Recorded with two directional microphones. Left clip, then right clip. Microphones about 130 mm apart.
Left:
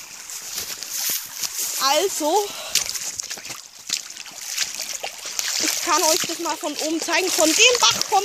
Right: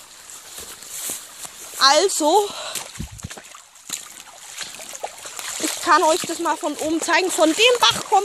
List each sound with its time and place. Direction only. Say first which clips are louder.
1.8 s speech: right 5 dB; 15° right (ahead or behind)
4.6 s a sound: left 4 dB; 20° right (ahead or behind)
7.5 s speech: left 1 dB; 15° right (ahead or behind)